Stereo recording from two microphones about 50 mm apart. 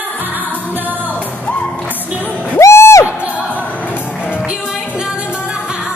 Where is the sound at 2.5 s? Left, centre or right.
Left.